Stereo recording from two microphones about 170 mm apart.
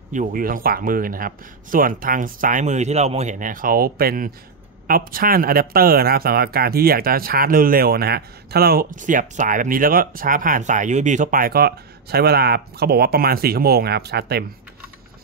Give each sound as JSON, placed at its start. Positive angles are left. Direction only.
{"t": 0.1, "sound": "speech", "side_deg": -55}